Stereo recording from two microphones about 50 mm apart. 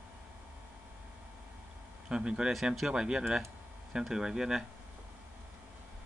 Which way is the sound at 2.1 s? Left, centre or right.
Centre.